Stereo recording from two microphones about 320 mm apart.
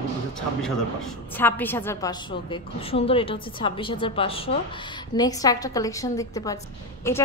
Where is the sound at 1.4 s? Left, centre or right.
Centre.